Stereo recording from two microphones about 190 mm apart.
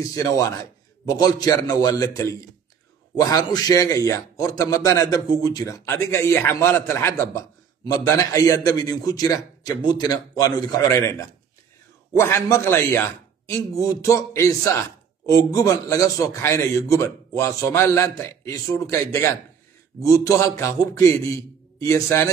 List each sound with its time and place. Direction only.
0.1 s a man's voice: 20° left (ahead or behind)